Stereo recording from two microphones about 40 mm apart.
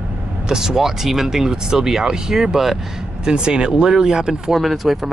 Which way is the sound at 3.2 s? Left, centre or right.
Right.